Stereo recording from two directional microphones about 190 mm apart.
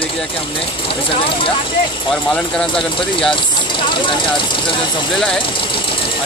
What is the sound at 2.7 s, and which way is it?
Speech, 25° left (ahead or behind).